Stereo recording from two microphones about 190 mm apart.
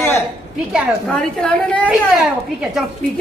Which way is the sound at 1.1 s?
5° left (ahead or behind).